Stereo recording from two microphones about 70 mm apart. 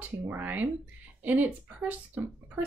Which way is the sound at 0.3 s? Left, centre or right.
Right.